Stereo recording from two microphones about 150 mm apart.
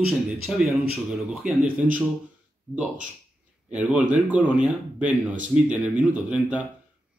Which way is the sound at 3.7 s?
10° right (ahead or behind).